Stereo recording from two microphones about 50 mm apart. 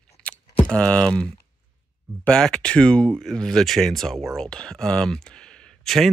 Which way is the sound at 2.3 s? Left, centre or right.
Centre.